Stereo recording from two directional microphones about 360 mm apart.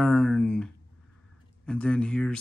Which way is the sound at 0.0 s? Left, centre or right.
Centre.